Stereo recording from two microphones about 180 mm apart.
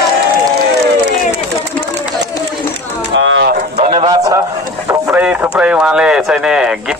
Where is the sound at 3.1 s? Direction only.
90° right.